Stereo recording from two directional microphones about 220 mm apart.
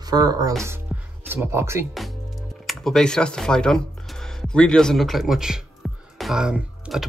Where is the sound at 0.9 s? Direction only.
5° right (ahead or behind).